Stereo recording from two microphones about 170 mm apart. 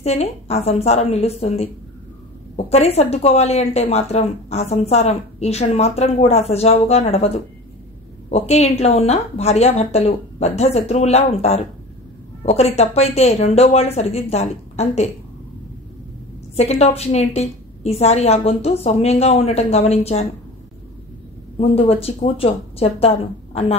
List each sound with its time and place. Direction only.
0.0 s a woman's voice: 40° left (ahead or behind)
16.5 s a woman's voice: 40° left (ahead or behind)
21.5 s a woman's voice: 35° left (ahead or behind)